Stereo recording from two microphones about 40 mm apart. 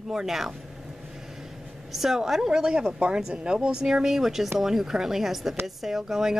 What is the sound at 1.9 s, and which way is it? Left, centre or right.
A woman's voice, centre.